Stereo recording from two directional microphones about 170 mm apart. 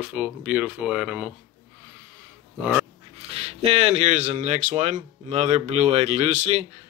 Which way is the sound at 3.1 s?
35° right (ahead or behind).